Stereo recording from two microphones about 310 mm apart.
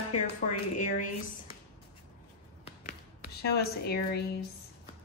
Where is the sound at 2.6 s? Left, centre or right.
Left.